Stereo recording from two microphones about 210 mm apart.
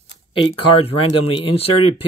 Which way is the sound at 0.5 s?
25° left (ahead or behind).